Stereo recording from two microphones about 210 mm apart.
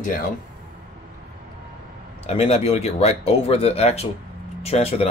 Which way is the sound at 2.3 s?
30° left (ahead or behind).